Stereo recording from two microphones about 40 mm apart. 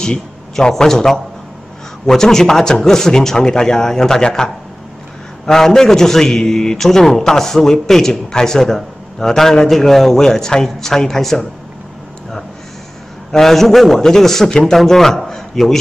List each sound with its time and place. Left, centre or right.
0.6 s a man's voice: centre
5.5 s a man's voice: centre
13.3 s a man's voice: centre